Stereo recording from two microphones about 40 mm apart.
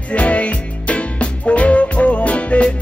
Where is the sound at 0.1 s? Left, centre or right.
Left.